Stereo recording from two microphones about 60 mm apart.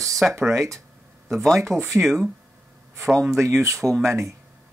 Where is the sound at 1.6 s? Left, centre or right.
Right.